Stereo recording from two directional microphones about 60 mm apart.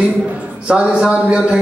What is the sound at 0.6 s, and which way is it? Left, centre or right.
Speech, centre.